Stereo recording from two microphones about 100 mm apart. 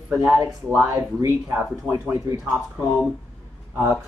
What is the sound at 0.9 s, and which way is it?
Speech, 35° right (ahead or behind).